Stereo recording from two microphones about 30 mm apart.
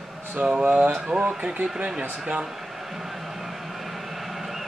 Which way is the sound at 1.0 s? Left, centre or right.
Right.